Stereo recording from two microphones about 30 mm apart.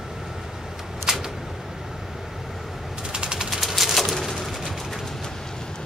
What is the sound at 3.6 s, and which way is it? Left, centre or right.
Pigeon, centre.